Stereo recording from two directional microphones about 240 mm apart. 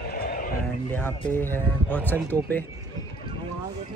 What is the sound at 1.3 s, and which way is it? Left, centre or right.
Speech, centre.